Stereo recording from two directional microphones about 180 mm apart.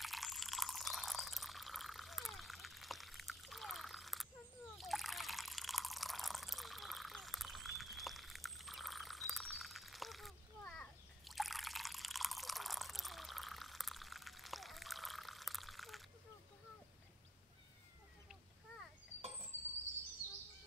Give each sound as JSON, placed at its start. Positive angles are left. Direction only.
{"t": 0.0, "sound": "water", "side_deg": 0}